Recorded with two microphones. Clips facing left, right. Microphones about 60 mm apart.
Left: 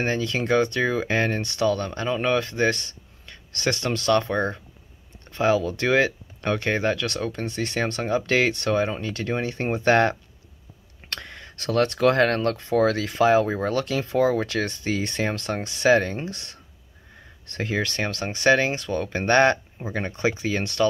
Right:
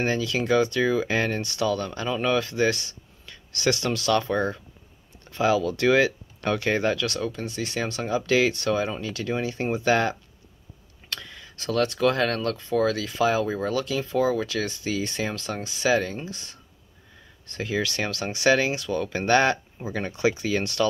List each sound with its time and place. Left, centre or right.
0.0 s speech: left
1.9 s a man's voice: left
5.3 s speech: left
17.7 s speech: left